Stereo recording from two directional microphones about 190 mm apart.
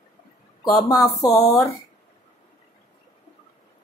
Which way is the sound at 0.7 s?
15° left (ahead or behind).